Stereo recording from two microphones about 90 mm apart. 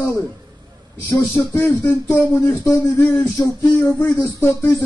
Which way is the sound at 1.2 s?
20° left (ahead or behind).